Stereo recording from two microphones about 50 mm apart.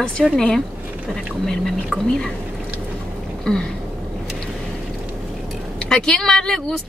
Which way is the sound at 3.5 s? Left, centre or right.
Centre.